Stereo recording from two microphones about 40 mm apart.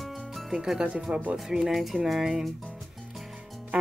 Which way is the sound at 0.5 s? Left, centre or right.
Centre.